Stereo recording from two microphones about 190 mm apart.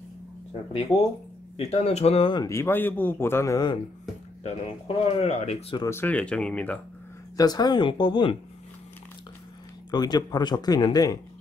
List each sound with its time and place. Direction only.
1.6 s speech: 35° left (ahead or behind); by 3.7 s 15° left (ahead or behind)
4.4 s speech: 30° left (ahead or behind)
5.8 s speech: 15° left (ahead or behind)
7.3 s speech: 20° left (ahead or behind)
9.8 s speech: 20° left (ahead or behind)